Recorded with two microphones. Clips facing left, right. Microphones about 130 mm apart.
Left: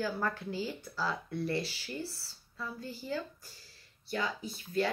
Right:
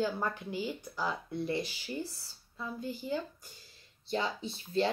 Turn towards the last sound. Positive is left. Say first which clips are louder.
# right 2 dB
turn(degrees=-25)  # may be behind; listen again after turning